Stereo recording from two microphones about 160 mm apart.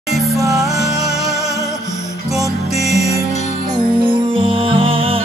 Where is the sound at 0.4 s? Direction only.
20° right (ahead or behind).